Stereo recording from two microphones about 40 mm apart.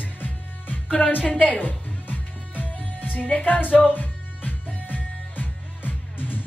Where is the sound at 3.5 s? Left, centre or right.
Left.